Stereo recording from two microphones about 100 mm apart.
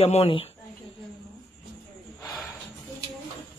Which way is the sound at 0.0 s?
80° left.